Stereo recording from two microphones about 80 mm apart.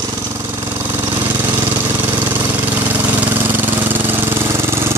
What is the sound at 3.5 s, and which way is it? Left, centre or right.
Engine, right.